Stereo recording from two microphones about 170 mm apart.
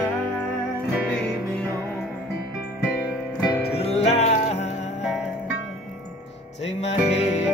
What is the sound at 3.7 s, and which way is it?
Music, 40° left (ahead or behind).